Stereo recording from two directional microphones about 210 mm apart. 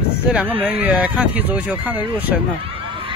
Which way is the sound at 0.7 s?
5° right (ahead or behind).